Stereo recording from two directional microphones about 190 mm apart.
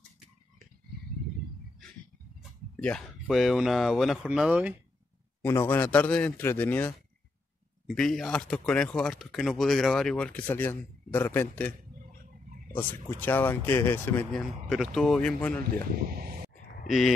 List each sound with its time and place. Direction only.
2.7 s speech: 5° left (ahead or behind)
5.4 s speech: 10° left (ahead or behind)
12.7 s speech: 10° left (ahead or behind)
14.7 s speech: centre (ahead or behind)
16.1 s a sound: 50° right (ahead or behind)